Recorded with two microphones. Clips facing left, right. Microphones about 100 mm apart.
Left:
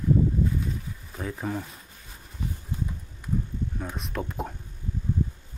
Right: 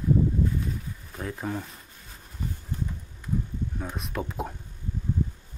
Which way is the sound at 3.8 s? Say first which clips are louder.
Right 1 dB; centre (ahead or behind).